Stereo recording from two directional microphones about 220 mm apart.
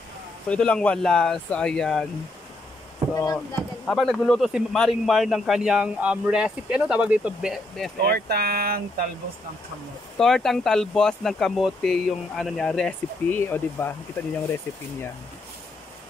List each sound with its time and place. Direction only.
0.5 s speech: 5° left (ahead or behind)
3.8 s speech: centre (ahead or behind)
8.0 s speech: 45° right (ahead or behind)
10.1 s speech: centre (ahead or behind)